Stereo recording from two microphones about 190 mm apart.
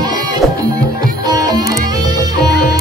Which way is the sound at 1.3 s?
20° right (ahead or behind).